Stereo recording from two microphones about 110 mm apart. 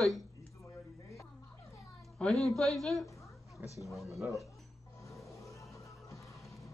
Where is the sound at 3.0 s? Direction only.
30° left (ahead or behind).